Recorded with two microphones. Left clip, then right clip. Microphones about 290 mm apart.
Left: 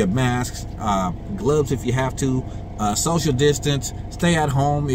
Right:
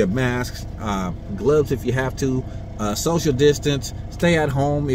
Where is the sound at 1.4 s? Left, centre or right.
Centre.